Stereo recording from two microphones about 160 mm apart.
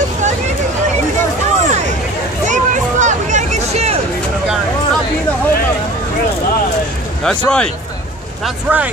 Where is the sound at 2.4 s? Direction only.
50° right (ahead or behind).